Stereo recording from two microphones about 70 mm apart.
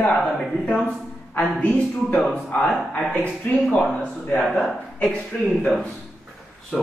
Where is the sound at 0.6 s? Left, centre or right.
Centre.